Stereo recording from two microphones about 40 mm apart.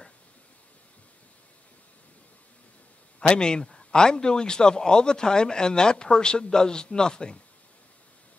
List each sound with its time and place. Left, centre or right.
3.2 s speech: left